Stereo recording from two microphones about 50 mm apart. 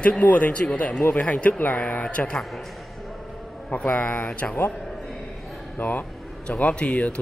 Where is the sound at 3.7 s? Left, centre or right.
Left.